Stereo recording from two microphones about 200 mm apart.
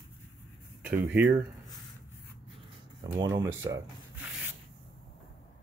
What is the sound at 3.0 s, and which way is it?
Speech, 15° right (ahead or behind).